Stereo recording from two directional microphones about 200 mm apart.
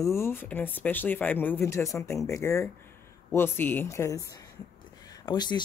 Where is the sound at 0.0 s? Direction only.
15° left (ahead or behind).